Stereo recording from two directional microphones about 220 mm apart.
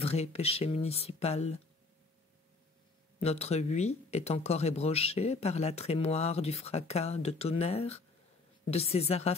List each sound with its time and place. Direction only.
0.0 s speech: 30° left (ahead or behind)
3.2 s speech: 30° left (ahead or behind)